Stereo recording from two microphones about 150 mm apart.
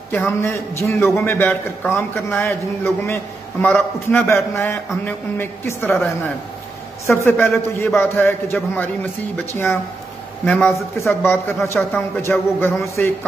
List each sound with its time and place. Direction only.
0.1 s a man's voice: 15° left (ahead or behind)
5.9 s a woman's voice: centre (ahead or behind)
7.1 s a man's voice: 15° left (ahead or behind)
10.4 s a man's voice: 10° left (ahead or behind)